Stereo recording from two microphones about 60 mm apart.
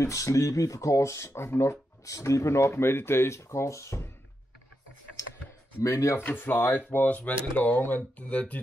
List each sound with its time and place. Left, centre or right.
0.0 s speech: left
5.8 s speech: left
6.2 s speech: left
7.1 s speech: left